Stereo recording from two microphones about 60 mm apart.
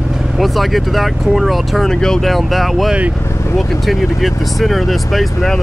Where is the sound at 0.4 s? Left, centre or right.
Centre.